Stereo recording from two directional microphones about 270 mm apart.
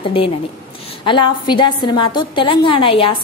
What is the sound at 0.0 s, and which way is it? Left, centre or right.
Speech, centre.